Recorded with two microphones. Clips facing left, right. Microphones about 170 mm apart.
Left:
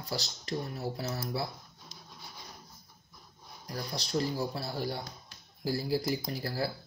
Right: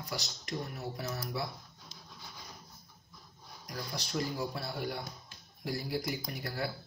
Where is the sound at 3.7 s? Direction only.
35° left (ahead or behind).